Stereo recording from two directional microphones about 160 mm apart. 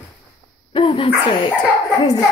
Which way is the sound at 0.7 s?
35° left (ahead or behind).